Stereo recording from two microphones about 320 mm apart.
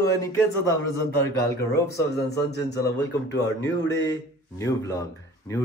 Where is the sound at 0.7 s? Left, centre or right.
Right.